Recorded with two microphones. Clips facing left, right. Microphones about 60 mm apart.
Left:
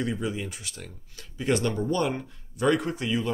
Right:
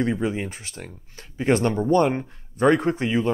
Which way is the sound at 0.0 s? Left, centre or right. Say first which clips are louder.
Right 6 dB; right.